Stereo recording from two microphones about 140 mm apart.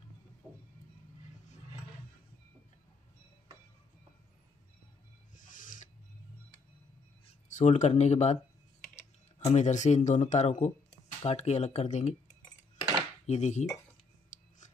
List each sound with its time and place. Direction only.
5.3 s a sound: 70° left (ahead or behind)
7.5 s speech: 55° left (ahead or behind)
13.3 s dishes: 55° left (ahead or behind)